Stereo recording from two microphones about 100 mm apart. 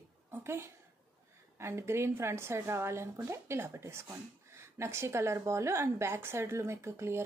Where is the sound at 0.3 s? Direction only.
25° right (ahead or behind).